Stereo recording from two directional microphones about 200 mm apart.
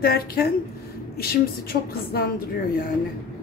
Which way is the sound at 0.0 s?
50° left (ahead or behind).